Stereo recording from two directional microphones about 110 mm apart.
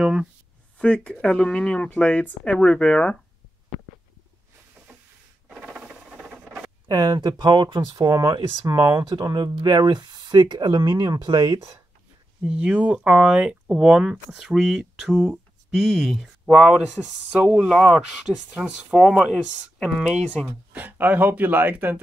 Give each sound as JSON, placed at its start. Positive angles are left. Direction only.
{"t": 0.0, "sound": "speech", "side_deg": -5}
{"t": 0.7, "sound": "speech", "side_deg": 10}
{"t": 5.7, "sound": "rodents", "side_deg": -10}
{"t": 6.9, "sound": "speech", "side_deg": -40}
{"t": 12.4, "sound": "speech", "side_deg": -10}
{"t": 20.4, "sound": "speech", "side_deg": -15}